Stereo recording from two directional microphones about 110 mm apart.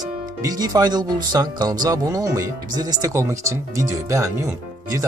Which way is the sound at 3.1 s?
25° right (ahead or behind).